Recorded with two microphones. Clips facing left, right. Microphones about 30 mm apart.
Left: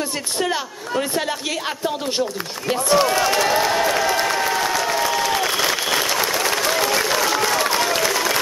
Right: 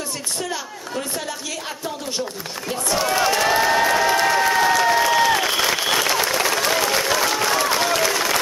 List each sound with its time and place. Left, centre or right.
0.4 s speech: left
2.7 s speech: left
3.1 s crowd: centre
6.8 s applause: centre